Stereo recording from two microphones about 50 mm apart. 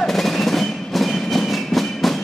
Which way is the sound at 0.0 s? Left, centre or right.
Centre.